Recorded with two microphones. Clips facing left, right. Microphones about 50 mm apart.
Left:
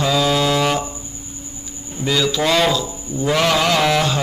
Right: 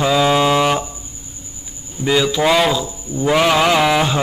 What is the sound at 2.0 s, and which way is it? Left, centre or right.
Mantra, centre.